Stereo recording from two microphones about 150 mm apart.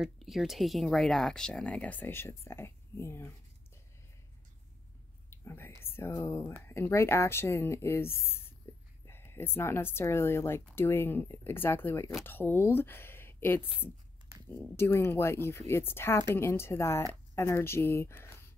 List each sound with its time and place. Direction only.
0.0 s speech: centre (ahead or behind); by 3.3 s 15° left (ahead or behind)
5.3 s whispering: 15° left (ahead or behind)
5.9 s speech: 15° left (ahead or behind)